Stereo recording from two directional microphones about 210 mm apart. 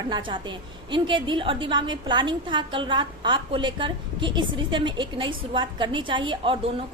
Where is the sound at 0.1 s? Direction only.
20° right (ahead or behind).